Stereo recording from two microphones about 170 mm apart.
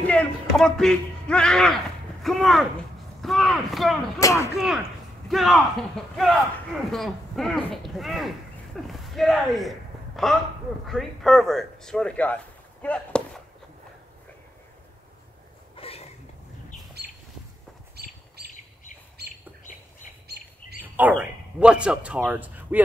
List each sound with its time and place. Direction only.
0.0 s speech: 5° left (ahead or behind)
4.2 s speech: 20° left (ahead or behind)
5.3 s a man's voice: centre (ahead or behind)
15.7 s a sound: 35° left (ahead or behind)
17.0 s a sound: 70° right (ahead or behind)
17.9 s bird: 70° right (ahead or behind)
20.4 s bird: 65° right (ahead or behind)
20.8 s speech: 10° right (ahead or behind)